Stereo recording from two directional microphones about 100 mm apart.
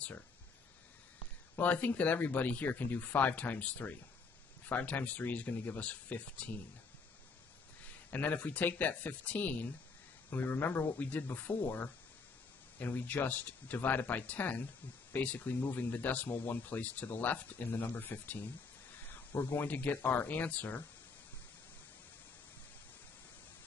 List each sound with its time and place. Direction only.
1.6 s speech: 15° left (ahead or behind)
8.1 s speech: 15° left (ahead or behind)